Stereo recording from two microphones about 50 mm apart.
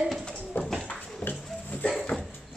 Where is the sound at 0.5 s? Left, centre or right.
Left.